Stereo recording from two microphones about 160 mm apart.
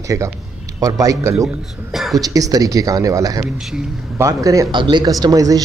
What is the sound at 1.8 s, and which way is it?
Speech, centre (ahead or behind).